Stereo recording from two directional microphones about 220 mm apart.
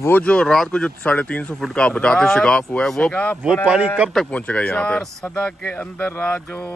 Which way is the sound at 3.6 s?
5° right (ahead or behind).